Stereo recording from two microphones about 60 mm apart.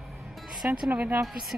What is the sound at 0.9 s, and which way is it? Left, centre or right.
Speech, right.